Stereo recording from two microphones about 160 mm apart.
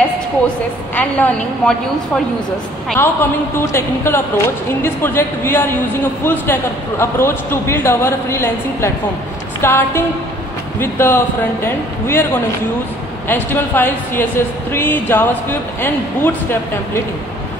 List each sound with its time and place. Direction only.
0.9 s a man's voice: 10° left (ahead or behind)
3.0 s a man's voice: 15° left (ahead or behind)
13.3 s a man's voice: 10° left (ahead or behind)